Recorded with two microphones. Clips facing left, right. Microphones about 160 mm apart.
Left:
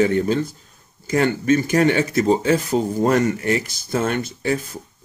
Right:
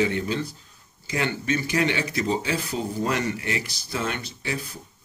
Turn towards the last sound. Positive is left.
turn(degrees=45)  # may be behind; listen again after turning